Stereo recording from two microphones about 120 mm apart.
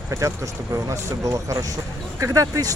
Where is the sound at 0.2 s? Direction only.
25° right (ahead or behind).